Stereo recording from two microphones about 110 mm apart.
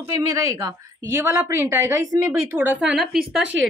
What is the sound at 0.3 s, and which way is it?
A woman's voice, 30° right (ahead or behind).